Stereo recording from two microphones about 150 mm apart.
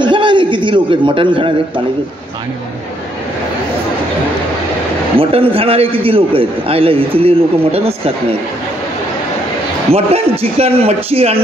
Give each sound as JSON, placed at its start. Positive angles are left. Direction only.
{"t": 0.0, "sound": "a man's voice", "side_deg": -30}
{"t": 5.1, "sound": "a man's voice", "side_deg": -40}
{"t": 9.8, "sound": "a man's voice", "side_deg": -40}